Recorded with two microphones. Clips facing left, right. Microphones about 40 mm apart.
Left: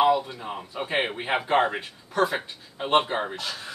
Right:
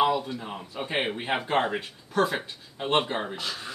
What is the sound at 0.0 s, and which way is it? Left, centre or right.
Speech, centre.